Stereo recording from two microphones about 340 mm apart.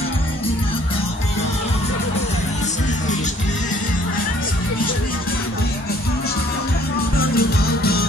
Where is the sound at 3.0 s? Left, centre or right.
Left.